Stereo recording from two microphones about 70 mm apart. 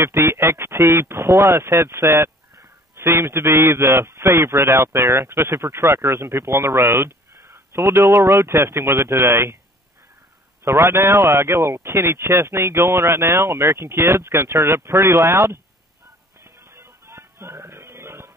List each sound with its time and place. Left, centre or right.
0.0 s a man's voice: right
10.6 s a man's voice: right
16.4 s music: right